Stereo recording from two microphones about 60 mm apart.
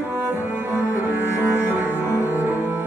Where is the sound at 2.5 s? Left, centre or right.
Right.